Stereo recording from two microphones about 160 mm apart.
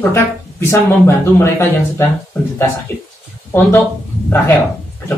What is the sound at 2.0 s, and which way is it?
Speech, 15° left (ahead or behind).